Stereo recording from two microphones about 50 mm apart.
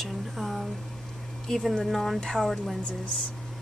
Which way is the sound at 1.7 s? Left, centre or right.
Centre.